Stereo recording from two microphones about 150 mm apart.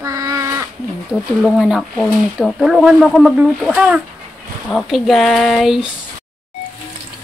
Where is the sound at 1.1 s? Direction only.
Centre (ahead or behind).